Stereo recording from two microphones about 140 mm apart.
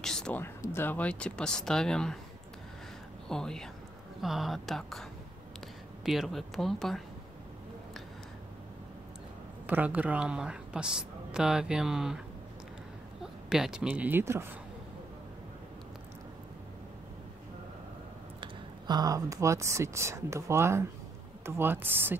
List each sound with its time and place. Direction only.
0.0 s a sound: 5° left (ahead or behind)
0.4 s a woman's voice: 15° left (ahead or behind)
3.3 s a woman's voice: 5° left (ahead or behind)
6.0 s a woman's voice: centre (ahead or behind)
9.7 s a woman's voice: 10° right (ahead or behind)
13.2 s speech: 5° right (ahead or behind)
18.4 s speech: 30° right (ahead or behind)